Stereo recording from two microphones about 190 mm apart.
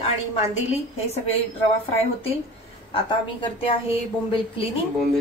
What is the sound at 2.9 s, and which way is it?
A woman's voice, 25° left (ahead or behind).